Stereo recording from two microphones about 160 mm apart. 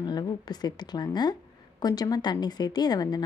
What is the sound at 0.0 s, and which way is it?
A woman's voice, 25° left (ahead or behind).